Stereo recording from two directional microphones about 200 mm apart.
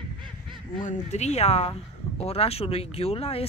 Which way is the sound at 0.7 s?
35° left (ahead or behind).